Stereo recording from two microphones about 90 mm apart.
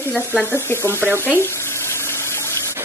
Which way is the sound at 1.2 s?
25° left (ahead or behind).